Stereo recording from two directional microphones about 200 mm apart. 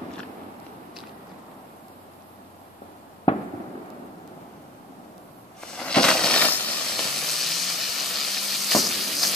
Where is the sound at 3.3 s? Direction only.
30° left (ahead or behind).